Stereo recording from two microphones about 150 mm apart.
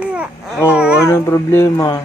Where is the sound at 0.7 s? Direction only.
5° right (ahead or behind).